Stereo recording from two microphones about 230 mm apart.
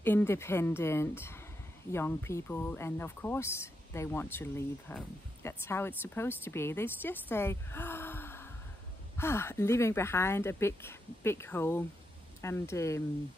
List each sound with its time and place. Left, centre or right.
0.0 s speech: centre